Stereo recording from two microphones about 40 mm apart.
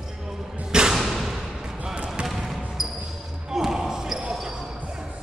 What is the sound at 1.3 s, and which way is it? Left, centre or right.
Basketball bounce, centre.